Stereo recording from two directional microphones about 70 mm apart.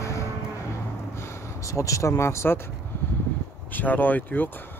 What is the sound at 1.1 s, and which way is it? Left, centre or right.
Speech, left.